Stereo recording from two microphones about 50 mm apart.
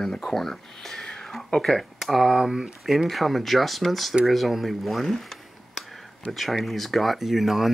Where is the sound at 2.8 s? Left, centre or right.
Centre.